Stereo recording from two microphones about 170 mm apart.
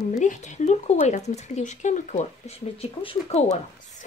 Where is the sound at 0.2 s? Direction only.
45° left (ahead or behind).